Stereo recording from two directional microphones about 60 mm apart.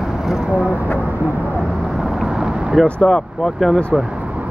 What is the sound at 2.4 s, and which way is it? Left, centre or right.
Vehicle, centre.